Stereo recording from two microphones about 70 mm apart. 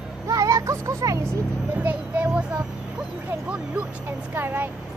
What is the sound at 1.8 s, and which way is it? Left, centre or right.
Speech, right.